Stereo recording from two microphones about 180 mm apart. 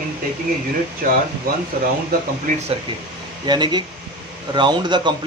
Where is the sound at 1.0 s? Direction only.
50° right (ahead or behind).